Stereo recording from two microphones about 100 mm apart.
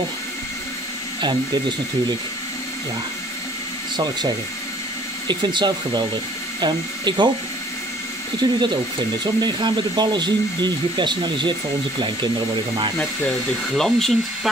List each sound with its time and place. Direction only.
3.9 s speech: 45° right (ahead or behind)
5.3 s speech: 50° right (ahead or behind)
8.4 s speech: 45° right (ahead or behind)
13.7 s speech: 5° left (ahead or behind)